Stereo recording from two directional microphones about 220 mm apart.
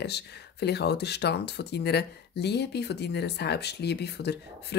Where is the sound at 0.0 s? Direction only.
50° left (ahead or behind).